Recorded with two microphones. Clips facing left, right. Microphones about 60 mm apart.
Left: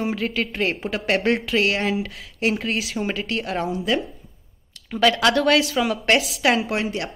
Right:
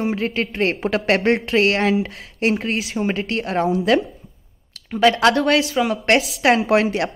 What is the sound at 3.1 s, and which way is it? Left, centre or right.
Speech, right.